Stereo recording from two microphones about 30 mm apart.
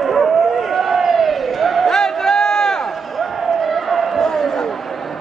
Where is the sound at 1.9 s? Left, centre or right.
Centre.